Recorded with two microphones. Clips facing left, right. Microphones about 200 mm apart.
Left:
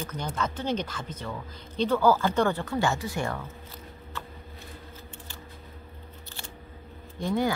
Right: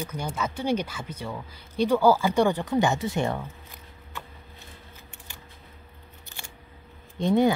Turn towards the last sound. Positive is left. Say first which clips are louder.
# right 6 dB
turn(degrees=-20)  # may be behind; listen again after turning